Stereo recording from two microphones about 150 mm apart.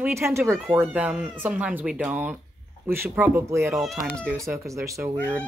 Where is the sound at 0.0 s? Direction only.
20° right (ahead or behind).